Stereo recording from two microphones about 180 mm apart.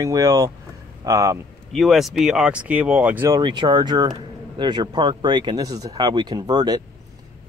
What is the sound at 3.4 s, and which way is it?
Speech, 25° right (ahead or behind).